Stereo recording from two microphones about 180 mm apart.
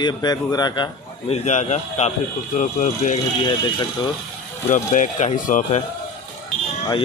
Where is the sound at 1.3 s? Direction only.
40° left (ahead or behind).